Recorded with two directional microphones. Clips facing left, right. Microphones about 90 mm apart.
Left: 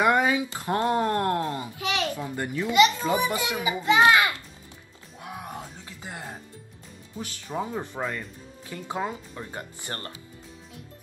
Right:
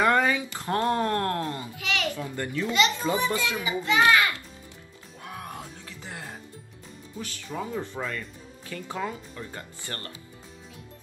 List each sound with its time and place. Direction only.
0.0 s speech: 15° left (ahead or behind)
5.2 s music: 20° left (ahead or behind)
7.2 s speech: 20° left (ahead or behind)